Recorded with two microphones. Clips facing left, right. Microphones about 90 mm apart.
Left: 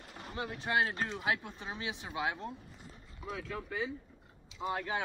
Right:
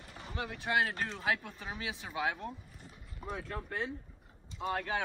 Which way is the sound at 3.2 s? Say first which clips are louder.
Even; centre (ahead or behind).